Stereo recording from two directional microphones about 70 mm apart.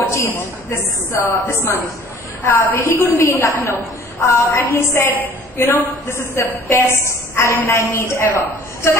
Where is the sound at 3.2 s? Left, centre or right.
Left.